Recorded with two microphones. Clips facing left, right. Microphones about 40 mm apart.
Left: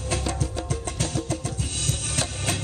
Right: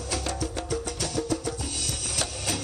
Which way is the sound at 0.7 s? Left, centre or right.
Left.